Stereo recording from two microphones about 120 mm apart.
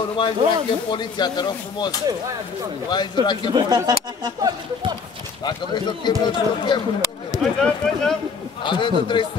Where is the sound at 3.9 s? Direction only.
35° right (ahead or behind).